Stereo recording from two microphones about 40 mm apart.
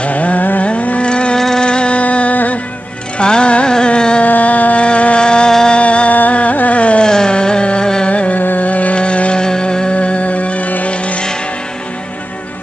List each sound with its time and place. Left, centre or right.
0.0 s carnatic music: left
0.7 s a sound: left
1.4 s music: centre; by 2.6 s left
3.2 s music: left
3.7 s carnatic music: left
4.2 s a sound: left
4.8 s music: left
5.8 s music: left
6.1 s carnatic music: left
7.1 s carnatic music: centre
8.1 s music: left
8.4 s music: left